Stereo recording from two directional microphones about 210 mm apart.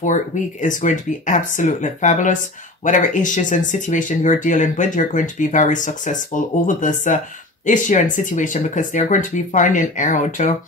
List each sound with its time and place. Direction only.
0.0 s speech: 35° left (ahead or behind)